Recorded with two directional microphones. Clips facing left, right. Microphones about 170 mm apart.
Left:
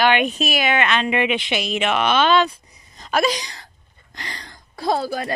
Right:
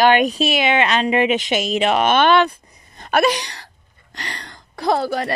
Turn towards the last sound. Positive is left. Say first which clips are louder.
# right 3 dB
turn(degrees=-65)  # may be behind; listen again after turning